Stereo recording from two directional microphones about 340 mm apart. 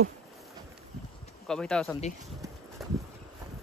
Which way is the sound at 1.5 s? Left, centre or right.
Centre.